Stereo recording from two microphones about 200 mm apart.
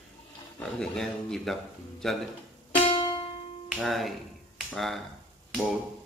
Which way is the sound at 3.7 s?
Centre (ahead or behind).